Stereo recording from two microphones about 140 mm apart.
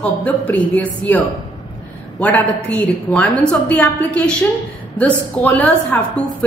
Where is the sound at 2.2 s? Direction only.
10° left (ahead or behind).